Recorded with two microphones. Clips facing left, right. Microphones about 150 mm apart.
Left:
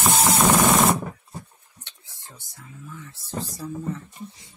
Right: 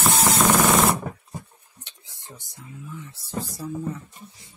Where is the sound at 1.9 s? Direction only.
15° right (ahead or behind).